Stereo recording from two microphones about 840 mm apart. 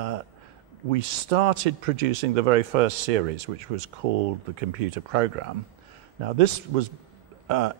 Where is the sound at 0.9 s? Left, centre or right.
Right.